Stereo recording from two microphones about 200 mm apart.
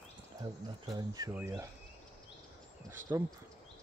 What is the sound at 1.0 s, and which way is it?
Speech, 15° right (ahead or behind).